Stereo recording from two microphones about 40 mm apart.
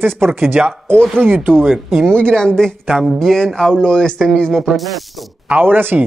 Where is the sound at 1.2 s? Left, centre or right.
Right.